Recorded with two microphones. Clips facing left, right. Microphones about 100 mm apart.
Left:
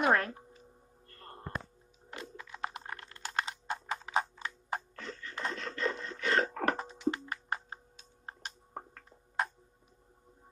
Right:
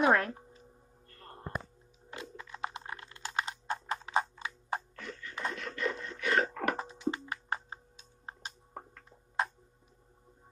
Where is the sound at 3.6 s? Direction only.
Centre (ahead or behind).